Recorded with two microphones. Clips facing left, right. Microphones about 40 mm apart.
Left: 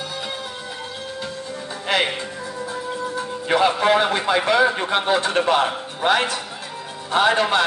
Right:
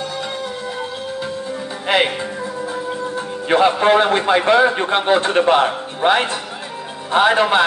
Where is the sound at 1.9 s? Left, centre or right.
Right.